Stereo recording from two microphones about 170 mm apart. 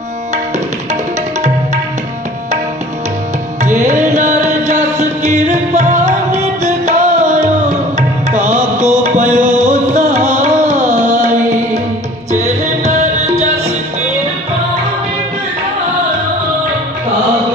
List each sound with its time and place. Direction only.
3.6 s music: 45° right (ahead or behind)